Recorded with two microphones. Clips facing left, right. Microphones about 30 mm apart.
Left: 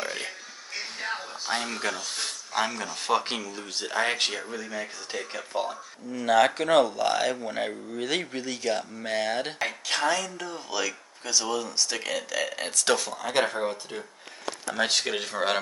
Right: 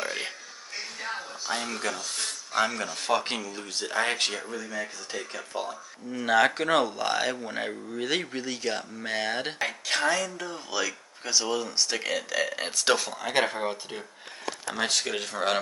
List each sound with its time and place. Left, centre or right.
1.6 s speech: centre
6.1 s speech: centre
14.8 s speech: centre